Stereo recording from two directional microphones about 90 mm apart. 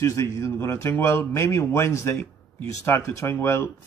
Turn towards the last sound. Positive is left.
turn(degrees=30)  # may be behind; listen again after turning